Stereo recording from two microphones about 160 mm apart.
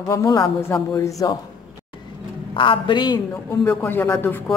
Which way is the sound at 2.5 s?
30° left (ahead or behind).